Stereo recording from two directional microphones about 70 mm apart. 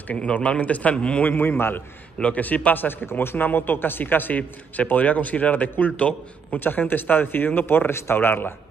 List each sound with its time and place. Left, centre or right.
0.1 s speech: centre
1.2 s speech: left
2.1 s speech: centre